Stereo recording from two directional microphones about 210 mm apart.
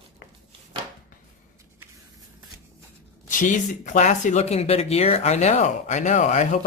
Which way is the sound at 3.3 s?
35° left (ahead or behind).